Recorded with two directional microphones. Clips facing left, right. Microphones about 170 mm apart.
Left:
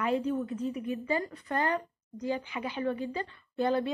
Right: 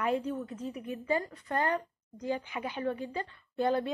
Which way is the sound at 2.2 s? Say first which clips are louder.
Left 1 dB; 45° right (ahead or behind).